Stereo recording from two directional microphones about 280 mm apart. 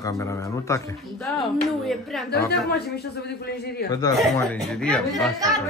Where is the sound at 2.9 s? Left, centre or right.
Left.